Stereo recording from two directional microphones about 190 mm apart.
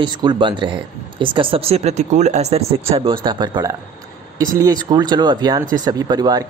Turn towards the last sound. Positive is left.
turn(degrees=-20)  # may be behind; listen again after turning